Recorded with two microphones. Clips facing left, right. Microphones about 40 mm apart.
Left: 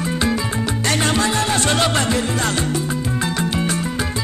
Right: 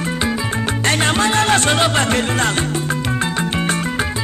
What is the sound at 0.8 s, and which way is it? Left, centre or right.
Music, right.